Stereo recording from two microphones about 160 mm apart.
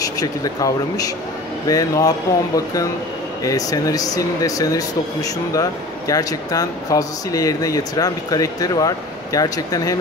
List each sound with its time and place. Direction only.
0.0 s speech: 25° left (ahead or behind)